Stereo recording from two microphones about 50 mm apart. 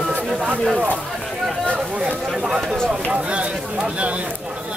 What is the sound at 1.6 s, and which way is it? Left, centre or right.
Speech, centre.